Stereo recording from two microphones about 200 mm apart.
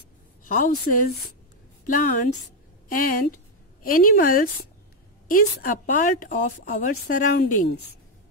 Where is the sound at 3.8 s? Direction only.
45° left (ahead or behind).